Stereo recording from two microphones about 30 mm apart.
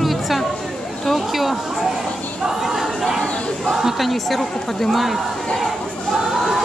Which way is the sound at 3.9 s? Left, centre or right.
Centre.